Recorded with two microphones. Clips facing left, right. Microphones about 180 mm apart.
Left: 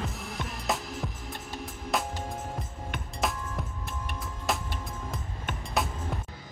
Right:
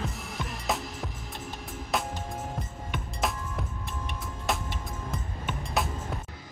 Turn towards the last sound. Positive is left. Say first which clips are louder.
# right 1 dB
turn(degrees=0)  # may be behind; listen again after turning